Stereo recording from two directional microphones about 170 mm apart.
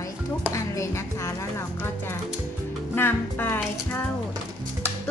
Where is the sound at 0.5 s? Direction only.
15° left (ahead or behind).